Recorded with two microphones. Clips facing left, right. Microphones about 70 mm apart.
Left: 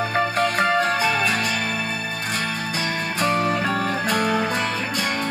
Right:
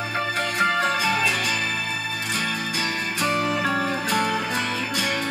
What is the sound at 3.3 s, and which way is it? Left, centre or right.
Music, left.